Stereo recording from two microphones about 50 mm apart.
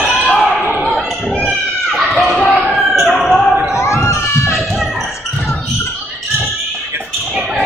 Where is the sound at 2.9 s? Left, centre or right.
Centre.